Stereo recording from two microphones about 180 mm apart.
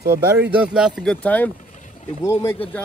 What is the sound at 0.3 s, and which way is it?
Speech, 10° right (ahead or behind).